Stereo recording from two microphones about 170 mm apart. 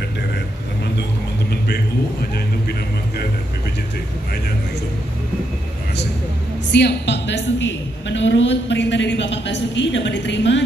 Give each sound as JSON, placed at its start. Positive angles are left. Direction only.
{"t": 6.7, "sound": "a woman's voice", "side_deg": 90}